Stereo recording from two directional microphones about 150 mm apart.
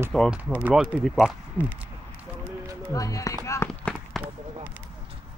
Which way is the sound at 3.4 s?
20° left (ahead or behind).